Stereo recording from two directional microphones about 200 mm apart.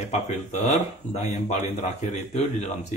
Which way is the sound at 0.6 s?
35° left (ahead or behind).